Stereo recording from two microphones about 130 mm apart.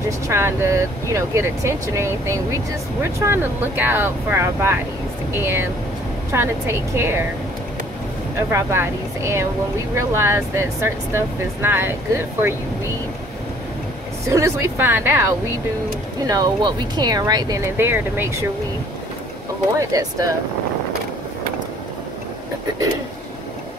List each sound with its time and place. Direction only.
0.3 s speech: 20° right (ahead or behind)
8.4 s speech: 20° right (ahead or behind)
14.3 s speech: 20° right (ahead or behind)
16.3 s speech: 30° right (ahead or behind)
17.7 s speech: 15° right (ahead or behind)
19.8 s speech: 25° right (ahead or behind)